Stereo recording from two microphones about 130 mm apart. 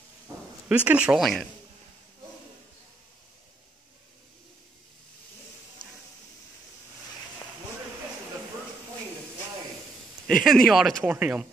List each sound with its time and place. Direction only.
0.7 s speech: 10° right (ahead or behind)
10.2 s speech: 5° left (ahead or behind)
11.1 s speech: 10° right (ahead or behind)